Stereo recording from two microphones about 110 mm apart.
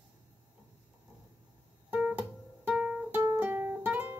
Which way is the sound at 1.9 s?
10° right (ahead or behind).